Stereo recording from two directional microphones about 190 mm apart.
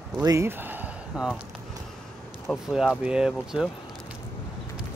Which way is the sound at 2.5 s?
Centre (ahead or behind).